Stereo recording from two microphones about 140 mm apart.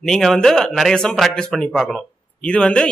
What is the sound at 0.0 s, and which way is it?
A man's voice, centre (ahead or behind).